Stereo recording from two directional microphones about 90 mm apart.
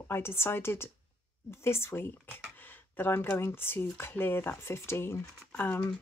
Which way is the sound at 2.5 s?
20° left (ahead or behind).